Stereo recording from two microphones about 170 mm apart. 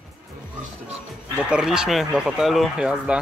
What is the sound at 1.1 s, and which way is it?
Speech, 5° right (ahead or behind).